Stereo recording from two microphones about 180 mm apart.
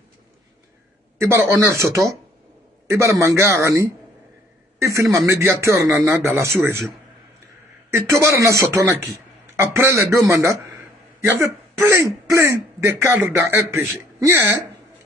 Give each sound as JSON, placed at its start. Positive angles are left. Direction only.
{"t": 1.1, "sound": "a sound", "side_deg": -15}
{"t": 1.5, "sound": "a man's voice", "side_deg": -15}
{"t": 7.9, "sound": "a man's voice", "side_deg": -15}